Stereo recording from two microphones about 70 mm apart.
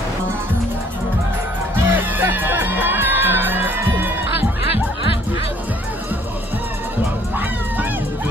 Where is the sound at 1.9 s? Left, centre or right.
Right.